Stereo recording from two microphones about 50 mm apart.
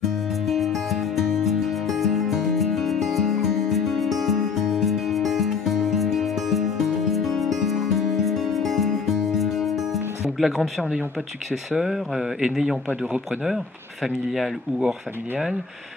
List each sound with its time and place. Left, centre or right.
0.0 s music: centre
11.7 s speech: centre
14.8 s speech: centre